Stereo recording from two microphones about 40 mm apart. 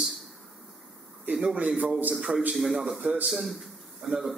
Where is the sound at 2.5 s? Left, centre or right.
Centre.